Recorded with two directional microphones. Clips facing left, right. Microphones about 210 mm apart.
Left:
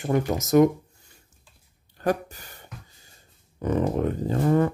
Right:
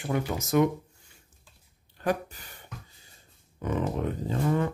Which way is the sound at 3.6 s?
40° left (ahead or behind).